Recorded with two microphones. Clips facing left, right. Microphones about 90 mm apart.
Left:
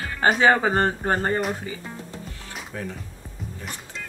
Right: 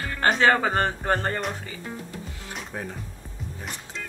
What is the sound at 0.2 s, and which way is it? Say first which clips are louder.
Speech: left 2 dB; 10° left (ahead or behind).